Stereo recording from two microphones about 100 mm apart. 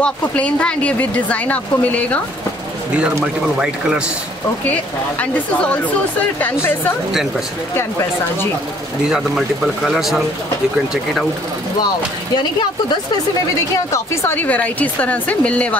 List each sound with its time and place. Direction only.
0.0 s speech: 10° left (ahead or behind)
3.5 s speech: 10° right (ahead or behind)
7.1 s speech: 5° right (ahead or behind)
9.8 s speech: 5° right (ahead or behind)
13.9 s speech: 25° left (ahead or behind)